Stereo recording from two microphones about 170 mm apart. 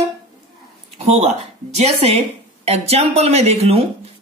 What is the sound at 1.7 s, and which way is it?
Speech, 40° right (ahead or behind).